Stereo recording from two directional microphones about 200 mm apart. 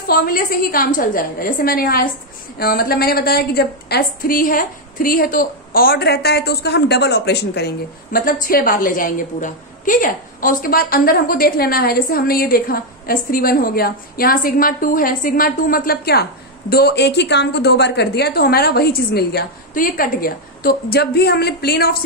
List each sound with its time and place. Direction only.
0.0 s a woman's voice: 50° left (ahead or behind)